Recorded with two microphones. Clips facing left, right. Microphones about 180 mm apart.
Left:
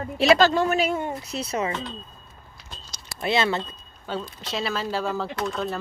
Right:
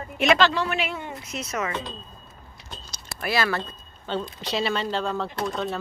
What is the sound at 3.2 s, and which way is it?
Speech, 25° left (ahead or behind).